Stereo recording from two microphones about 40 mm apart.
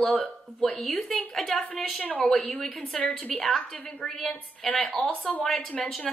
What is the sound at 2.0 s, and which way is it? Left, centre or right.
Speech, left.